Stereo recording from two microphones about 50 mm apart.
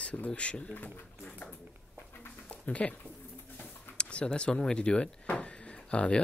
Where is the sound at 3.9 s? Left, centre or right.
Left.